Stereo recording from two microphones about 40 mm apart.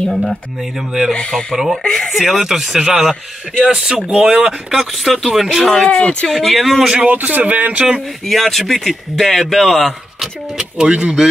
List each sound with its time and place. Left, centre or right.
0.1 s speech: centre
1.8 s speech: centre
2.2 s speech: centre
3.0 s speech: centre
3.6 s speech: right; by 5.9 s centre
5.9 s speech: left
6.2 s speech: centre
7.0 s speech: right
8.3 s speech: centre
10.6 s speech: right